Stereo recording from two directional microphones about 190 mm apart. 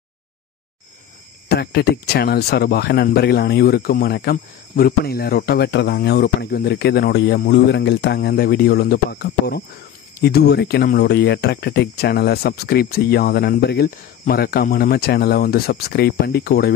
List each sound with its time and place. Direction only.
1.5 s speech: 55° left (ahead or behind)